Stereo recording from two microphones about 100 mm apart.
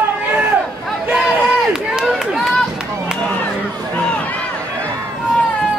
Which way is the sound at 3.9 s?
15° left (ahead or behind).